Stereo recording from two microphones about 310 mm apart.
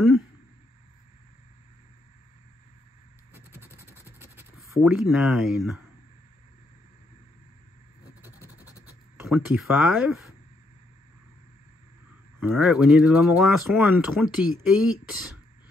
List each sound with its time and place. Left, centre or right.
3.3 s vehicle: centre
4.2 s speech: centre
8.2 s vehicle: centre
9.1 s speech: centre
12.4 s speech: centre